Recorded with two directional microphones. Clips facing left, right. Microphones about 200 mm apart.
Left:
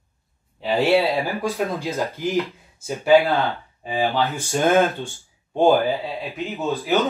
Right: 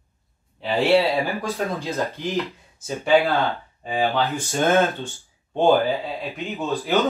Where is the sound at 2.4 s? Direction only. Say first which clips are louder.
Left 3 dB; centre (ahead or behind).